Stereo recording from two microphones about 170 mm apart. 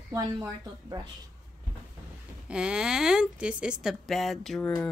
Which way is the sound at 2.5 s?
5° right (ahead or behind).